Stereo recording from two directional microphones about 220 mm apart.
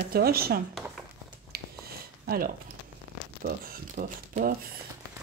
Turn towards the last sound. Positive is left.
turn(degrees=-40)  # may be behind; listen again after turning